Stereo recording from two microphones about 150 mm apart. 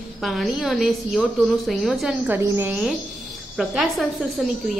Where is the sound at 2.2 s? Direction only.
15° right (ahead or behind).